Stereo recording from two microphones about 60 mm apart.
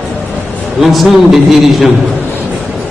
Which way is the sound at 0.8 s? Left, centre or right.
Centre.